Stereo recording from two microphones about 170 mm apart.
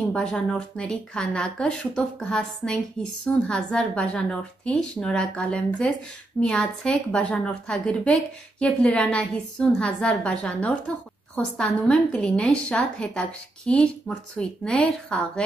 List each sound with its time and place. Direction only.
0.1 s a woman's voice: 5° left (ahead or behind)